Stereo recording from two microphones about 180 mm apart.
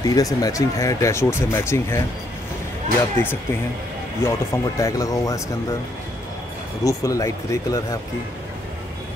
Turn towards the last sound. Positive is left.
turn(degrees=20)  # may be behind; listen again after turning